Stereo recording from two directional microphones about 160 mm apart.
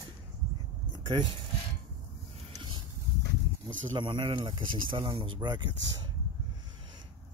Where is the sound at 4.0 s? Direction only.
30° right (ahead or behind).